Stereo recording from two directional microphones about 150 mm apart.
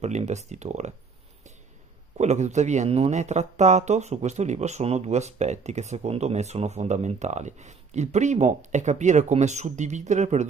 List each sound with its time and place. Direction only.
0.0 s speech: 50° right (ahead or behind)
2.1 s speech: 50° right (ahead or behind)